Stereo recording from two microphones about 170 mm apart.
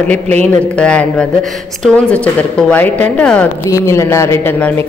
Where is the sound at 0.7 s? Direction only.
5° left (ahead or behind).